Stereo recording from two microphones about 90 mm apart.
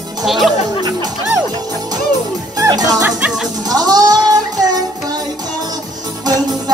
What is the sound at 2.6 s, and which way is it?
Music, 30° right (ahead or behind).